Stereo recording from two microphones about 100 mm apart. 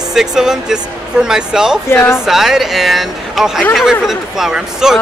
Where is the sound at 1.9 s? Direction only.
25° left (ahead or behind).